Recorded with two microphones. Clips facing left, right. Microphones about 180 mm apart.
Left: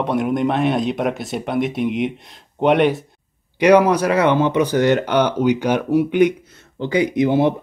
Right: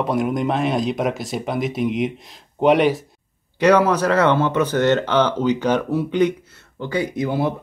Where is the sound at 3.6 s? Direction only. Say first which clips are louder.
Left 2 dB; 15° left (ahead or behind).